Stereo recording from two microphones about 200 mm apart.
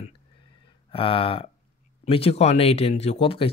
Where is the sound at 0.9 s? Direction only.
25° left (ahead or behind).